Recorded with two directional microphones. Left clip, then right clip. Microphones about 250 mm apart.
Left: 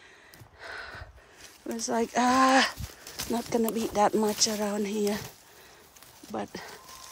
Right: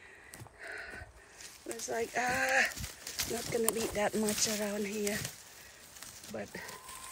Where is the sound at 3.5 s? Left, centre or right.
Left.